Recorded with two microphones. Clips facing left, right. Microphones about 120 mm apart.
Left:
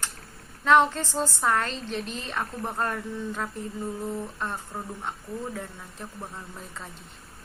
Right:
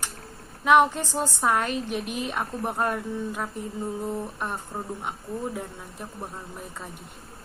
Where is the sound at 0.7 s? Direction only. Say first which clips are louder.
Right 1 dB; 15° right (ahead or behind).